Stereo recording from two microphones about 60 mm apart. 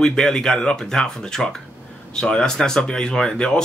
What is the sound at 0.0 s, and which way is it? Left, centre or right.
Speech, centre.